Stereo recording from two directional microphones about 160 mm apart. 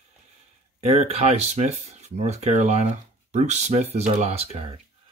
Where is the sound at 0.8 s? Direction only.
40° right (ahead or behind).